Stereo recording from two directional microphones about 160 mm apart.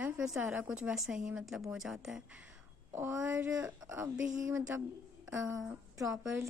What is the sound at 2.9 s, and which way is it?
Speech, 15° right (ahead or behind).